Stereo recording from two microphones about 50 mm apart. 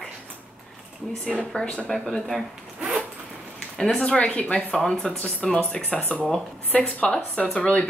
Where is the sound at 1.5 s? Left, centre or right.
Centre.